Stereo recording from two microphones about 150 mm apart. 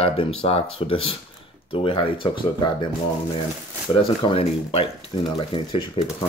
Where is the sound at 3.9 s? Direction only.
35° left (ahead or behind).